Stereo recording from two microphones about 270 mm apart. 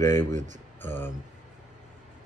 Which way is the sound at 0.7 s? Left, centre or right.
Centre.